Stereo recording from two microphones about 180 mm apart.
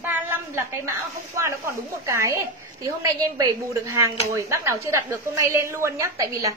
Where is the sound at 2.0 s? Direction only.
15° right (ahead or behind).